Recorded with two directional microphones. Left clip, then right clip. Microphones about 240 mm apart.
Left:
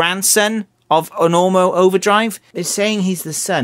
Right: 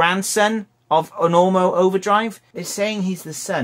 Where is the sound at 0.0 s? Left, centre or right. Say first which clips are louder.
Left 2 dB; left.